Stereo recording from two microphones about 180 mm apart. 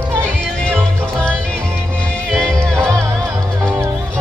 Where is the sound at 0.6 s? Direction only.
5° left (ahead or behind).